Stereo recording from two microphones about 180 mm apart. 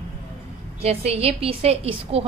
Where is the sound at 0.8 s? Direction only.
35° right (ahead or behind).